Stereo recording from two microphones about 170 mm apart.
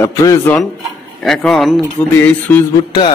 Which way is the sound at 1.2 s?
Centre (ahead or behind).